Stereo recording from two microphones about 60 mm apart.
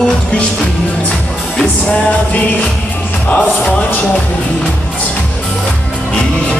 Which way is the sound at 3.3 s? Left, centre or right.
Left.